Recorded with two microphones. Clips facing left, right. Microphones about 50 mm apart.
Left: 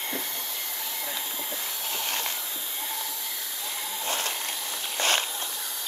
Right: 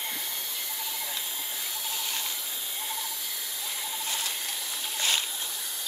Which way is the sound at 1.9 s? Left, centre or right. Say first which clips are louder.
Left 5 dB; left.